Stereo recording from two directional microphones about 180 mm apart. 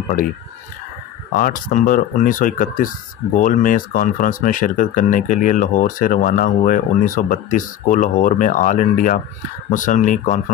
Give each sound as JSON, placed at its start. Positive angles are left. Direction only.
{"t": 1.4, "sound": "speech", "side_deg": 50}